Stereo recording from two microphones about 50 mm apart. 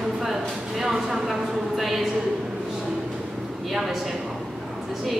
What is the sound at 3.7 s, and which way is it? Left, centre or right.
Speech, centre.